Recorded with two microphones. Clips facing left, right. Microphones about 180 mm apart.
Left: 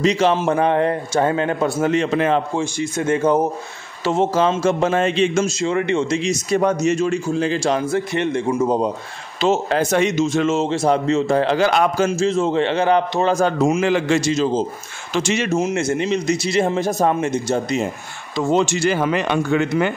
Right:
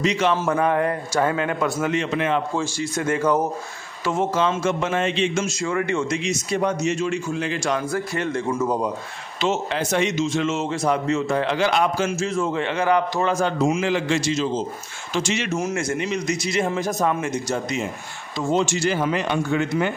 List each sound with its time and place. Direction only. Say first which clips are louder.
0.0 s a man's voice: left 4 dB; 30° left (ahead or behind)
2.5 s a man's voice: left 3 dB; 20° left (ahead or behind); by 5.5 s 40° left (ahead or behind)
5.5 s a man's voice: left 4 dB; 25° left (ahead or behind)
6.5 s a man's voice: left 5 dB; 45° left (ahead or behind); by 8.9 s 25° left (ahead or behind)
9.4 s speech: left 5 dB; 40° left (ahead or behind)
10.6 s a man's voice: left 4 dB; 30° left (ahead or behind); by 12.1 s 45° left (ahead or behind)
12.1 s a man's voice: left 5 dB; 25° left (ahead or behind)
15.5 s a man's voice: left 6 dB; 25° left (ahead or behind)
18.3 s speech: left 4 dB; 70° left (ahead or behind)